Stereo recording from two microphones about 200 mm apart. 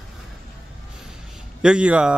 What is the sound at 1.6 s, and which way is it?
Speech, 5° right (ahead or behind).